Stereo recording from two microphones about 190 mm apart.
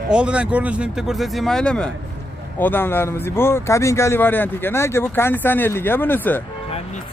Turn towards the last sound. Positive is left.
turn(degrees=10)  # may be behind; listen again after turning